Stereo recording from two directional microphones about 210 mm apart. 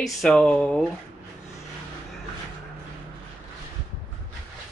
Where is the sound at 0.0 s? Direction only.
Centre (ahead or behind).